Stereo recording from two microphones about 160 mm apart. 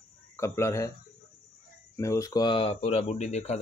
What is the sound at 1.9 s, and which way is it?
Speech, 20° left (ahead or behind).